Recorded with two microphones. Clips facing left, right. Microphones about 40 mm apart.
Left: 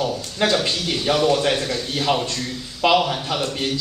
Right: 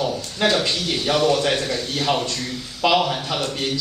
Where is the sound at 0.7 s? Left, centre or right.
Centre.